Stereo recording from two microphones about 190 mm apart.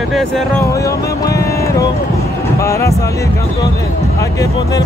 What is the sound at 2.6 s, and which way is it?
Speech, 15° left (ahead or behind).